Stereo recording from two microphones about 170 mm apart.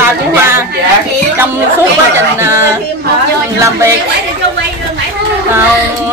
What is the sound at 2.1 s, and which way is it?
A woman's voice, 15° right (ahead or behind).